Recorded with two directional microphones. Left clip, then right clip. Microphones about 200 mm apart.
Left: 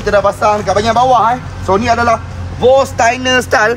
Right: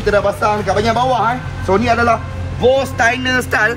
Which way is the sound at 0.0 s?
15° left (ahead or behind).